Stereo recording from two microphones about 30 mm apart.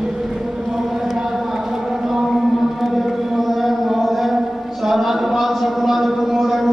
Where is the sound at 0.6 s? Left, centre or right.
Centre.